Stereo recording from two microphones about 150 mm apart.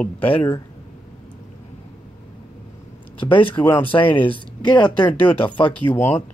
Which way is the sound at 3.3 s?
35° left (ahead or behind).